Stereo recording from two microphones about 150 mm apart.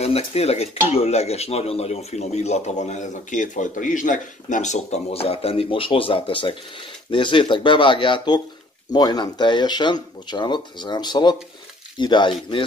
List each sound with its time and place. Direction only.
0.0 s speech: 45° left (ahead or behind)